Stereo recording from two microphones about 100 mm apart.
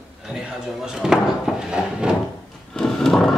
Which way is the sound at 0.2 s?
5° right (ahead or behind).